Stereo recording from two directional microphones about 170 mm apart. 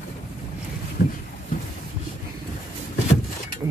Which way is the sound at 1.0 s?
60° left (ahead or behind).